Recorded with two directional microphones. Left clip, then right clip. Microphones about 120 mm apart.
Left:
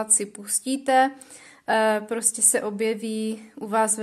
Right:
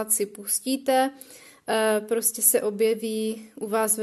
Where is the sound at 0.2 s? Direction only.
40° right (ahead or behind).